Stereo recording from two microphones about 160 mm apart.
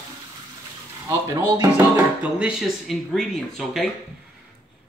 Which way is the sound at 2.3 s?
5° right (ahead or behind).